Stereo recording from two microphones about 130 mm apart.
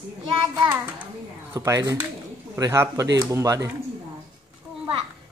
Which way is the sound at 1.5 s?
25° right (ahead or behind).